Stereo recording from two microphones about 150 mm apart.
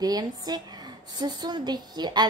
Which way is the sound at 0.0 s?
25° right (ahead or behind).